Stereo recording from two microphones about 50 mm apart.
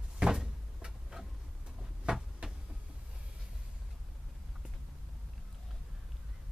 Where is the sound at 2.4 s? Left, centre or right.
Right.